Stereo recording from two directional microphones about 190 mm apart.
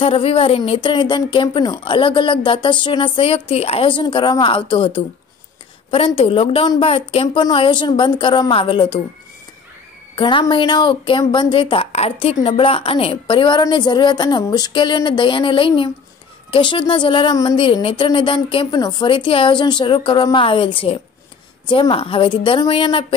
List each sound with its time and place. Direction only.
0.0 s speech: 30° left (ahead or behind)
10.1 s speech: 25° left (ahead or behind)